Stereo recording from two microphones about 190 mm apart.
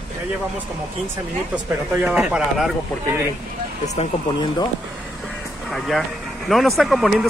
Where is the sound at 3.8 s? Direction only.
35° left (ahead or behind).